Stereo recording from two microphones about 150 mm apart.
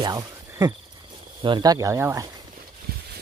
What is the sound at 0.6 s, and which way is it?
Speech, 25° right (ahead or behind).